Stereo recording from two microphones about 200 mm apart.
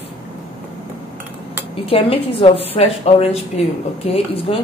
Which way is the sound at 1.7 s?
30° left (ahead or behind).